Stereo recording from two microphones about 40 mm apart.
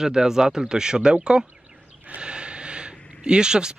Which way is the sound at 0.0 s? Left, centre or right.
Centre.